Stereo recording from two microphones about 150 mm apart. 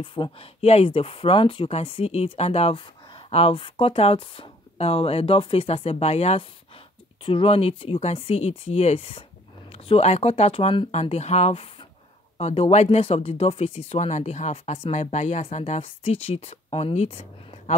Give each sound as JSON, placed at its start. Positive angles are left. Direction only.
{"t": 0.0, "sound": "speech", "side_deg": 35}